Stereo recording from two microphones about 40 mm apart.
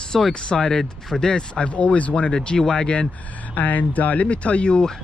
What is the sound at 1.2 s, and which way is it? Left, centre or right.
Speech, left.